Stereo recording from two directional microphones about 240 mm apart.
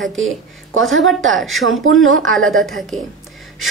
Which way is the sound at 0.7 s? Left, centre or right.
Right.